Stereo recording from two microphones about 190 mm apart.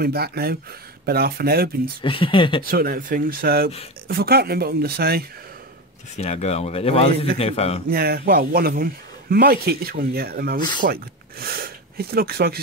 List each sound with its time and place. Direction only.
0.0 s speech: 55° right (ahead or behind)
2.0 s speech: 25° left (ahead or behind)
2.6 s a man's voice: 50° right (ahead or behind)
6.1 s speech: 35° left (ahead or behind)
7.9 s a man's voice: 55° right (ahead or behind)